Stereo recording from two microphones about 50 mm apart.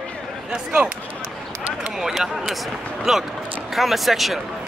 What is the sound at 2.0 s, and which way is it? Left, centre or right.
Speech, centre.